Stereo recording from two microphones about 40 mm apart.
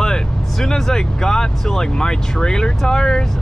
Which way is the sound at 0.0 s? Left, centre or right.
Centre.